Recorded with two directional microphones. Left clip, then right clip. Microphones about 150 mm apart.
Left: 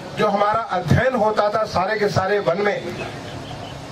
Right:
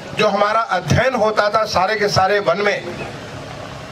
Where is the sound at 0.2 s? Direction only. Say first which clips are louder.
Right 3 dB; 15° right (ahead or behind).